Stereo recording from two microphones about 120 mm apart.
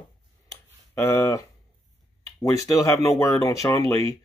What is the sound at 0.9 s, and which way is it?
Speech, 20° left (ahead or behind).